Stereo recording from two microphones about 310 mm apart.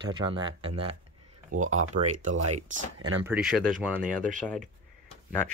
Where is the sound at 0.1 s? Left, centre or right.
Centre.